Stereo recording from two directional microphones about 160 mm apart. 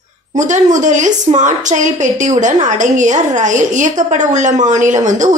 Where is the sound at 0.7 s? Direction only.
50° right (ahead or behind).